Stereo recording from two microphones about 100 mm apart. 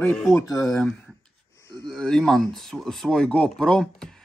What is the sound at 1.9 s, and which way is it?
Speech, 5° left (ahead or behind).